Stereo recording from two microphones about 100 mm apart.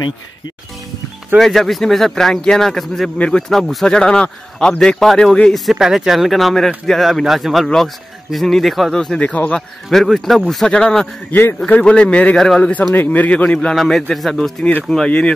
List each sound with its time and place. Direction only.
1.4 s speech: centre (ahead or behind)
9.8 s speech: centre (ahead or behind)
11.3 s speech: 15° left (ahead or behind); by 14.5 s centre (ahead or behind)
14.6 s speech: 15° left (ahead or behind)